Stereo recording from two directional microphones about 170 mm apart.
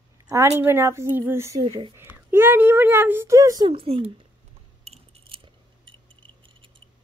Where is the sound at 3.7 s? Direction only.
35° right (ahead or behind).